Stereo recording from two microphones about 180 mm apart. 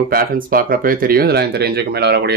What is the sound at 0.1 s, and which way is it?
Speech, 55° right (ahead or behind).